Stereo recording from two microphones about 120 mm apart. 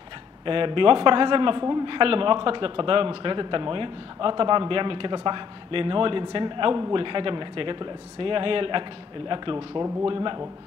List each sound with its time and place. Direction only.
0.5 s a man's voice: 45° right (ahead or behind)